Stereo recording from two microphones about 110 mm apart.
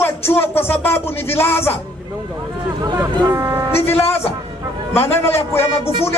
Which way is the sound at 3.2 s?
20° right (ahead or behind).